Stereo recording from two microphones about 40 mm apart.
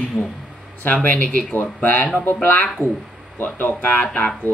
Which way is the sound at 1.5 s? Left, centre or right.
Left.